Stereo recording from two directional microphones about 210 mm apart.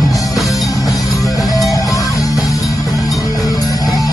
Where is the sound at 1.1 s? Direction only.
15° left (ahead or behind).